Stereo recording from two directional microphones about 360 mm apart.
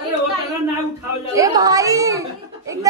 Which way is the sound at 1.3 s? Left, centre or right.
Centre.